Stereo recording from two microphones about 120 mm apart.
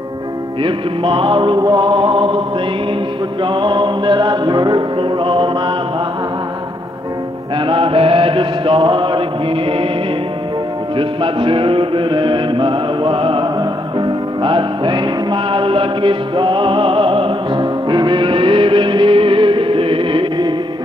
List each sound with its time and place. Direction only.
0.6 s mantra: 45° right (ahead or behind)
3.4 s music: 40° right (ahead or behind)
7.5 s mantra: 45° right (ahead or behind)
11.0 s music: 45° right (ahead or behind)